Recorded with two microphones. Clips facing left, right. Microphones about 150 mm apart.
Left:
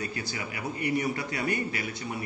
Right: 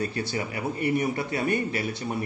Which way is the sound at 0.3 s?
30° right (ahead or behind).